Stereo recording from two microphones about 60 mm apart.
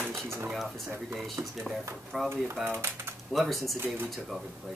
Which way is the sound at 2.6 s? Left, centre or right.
Right.